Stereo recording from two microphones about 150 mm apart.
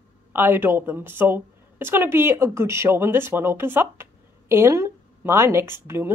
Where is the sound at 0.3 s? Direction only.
15° right (ahead or behind).